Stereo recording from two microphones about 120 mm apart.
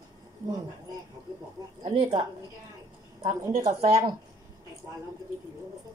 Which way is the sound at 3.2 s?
35° right (ahead or behind).